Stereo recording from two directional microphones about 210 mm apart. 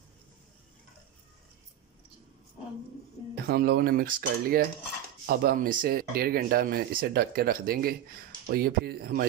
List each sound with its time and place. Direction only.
3.4 s speech: 50° right (ahead or behind)